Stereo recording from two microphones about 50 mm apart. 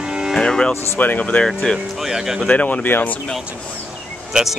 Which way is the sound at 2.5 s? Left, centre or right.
Left.